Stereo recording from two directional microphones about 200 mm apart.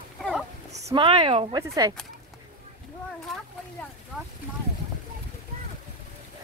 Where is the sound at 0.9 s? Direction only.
25° right (ahead or behind).